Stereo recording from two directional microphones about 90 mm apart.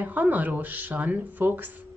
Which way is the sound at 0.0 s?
20° right (ahead or behind).